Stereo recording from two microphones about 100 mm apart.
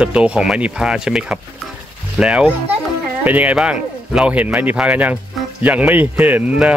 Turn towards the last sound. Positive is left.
turn(degrees=-15)  # may be behind; listen again after turning